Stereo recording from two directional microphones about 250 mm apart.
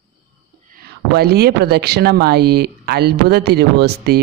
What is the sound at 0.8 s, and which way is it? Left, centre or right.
Speech, right.